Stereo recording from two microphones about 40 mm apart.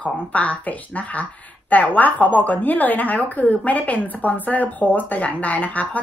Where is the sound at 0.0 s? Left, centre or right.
Left.